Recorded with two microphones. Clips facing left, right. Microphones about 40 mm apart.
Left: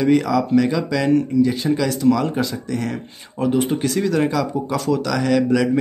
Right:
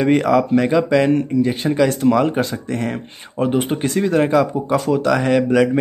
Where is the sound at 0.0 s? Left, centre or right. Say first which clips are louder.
Right 2 dB; right.